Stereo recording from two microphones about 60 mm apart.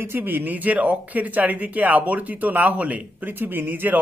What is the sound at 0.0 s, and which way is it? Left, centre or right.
Speech, right.